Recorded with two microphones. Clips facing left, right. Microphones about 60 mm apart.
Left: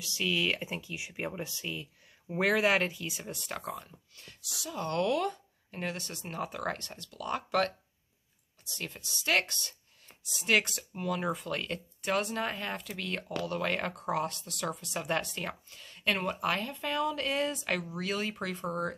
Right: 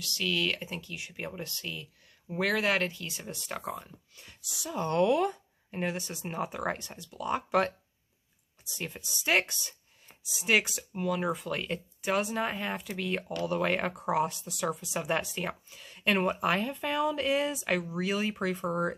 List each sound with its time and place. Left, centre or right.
0.0 s speech: centre